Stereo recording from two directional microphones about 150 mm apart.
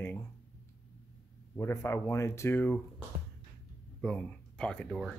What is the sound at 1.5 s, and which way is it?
Speech, 15° left (ahead or behind).